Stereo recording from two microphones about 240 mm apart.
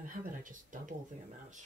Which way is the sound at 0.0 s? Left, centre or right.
Right.